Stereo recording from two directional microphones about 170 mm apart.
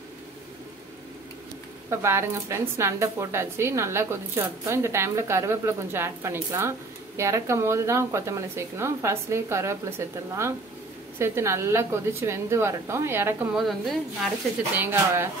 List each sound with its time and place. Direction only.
1.9 s a woman's voice: 15° right (ahead or behind)
13.6 s a woman's voice: centre (ahead or behind)
14.8 s a woman's voice: 15° right (ahead or behind)